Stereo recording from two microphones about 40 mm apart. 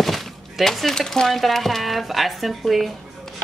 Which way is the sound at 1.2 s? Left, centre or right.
Centre.